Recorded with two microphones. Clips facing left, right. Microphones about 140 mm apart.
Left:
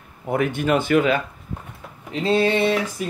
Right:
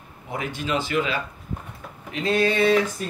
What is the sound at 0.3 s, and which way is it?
Speech, 55° left (ahead or behind).